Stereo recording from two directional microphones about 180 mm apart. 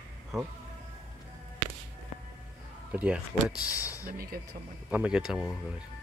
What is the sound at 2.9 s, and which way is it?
Speech, 10° right (ahead or behind).